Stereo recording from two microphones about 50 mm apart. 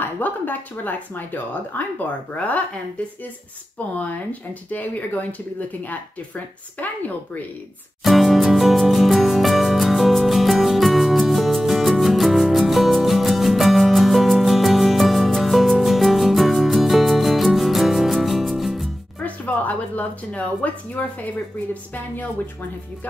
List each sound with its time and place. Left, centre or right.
0.0 s speech: left
3.7 s speech: left
8.0 s music: centre
19.1 s a sound: left
20.2 s speech: left